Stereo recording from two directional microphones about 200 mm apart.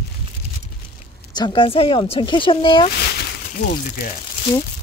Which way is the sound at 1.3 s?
25° left (ahead or behind).